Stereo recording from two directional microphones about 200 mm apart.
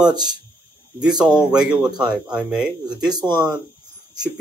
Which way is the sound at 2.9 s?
20° right (ahead or behind).